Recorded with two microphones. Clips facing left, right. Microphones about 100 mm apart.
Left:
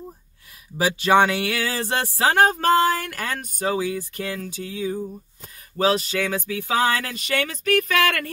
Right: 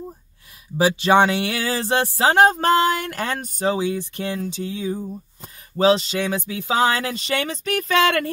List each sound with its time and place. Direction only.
0.7 s speech: 25° right (ahead or behind)